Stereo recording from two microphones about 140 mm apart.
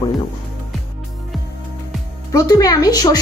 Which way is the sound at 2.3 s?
25° left (ahead or behind).